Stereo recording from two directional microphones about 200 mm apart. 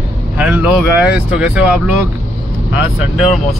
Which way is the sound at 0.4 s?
5° right (ahead or behind).